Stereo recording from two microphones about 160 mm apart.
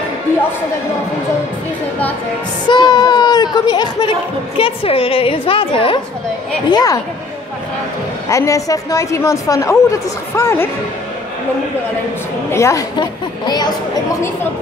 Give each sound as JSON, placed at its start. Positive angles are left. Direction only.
{"t": 2.7, "sound": "a woman's voice", "side_deg": 25}
{"t": 6.7, "sound": "a woman's voice", "side_deg": 25}
{"t": 8.3, "sound": "a woman's voice", "side_deg": 20}
{"t": 12.4, "sound": "a woman's voice", "side_deg": 15}